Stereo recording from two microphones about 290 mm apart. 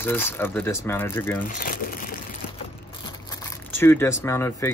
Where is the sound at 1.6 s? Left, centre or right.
Left.